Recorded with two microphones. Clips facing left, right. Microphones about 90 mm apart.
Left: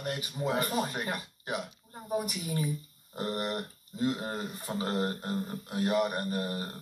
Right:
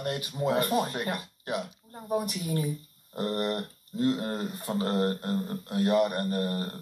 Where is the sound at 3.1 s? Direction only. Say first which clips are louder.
Right 4 dB; 10° left (ahead or behind).